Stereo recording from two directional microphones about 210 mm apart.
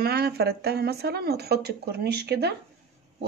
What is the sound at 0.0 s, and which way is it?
Speech, 50° right (ahead or behind).